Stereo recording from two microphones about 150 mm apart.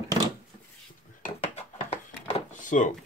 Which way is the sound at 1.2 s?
45° left (ahead or behind).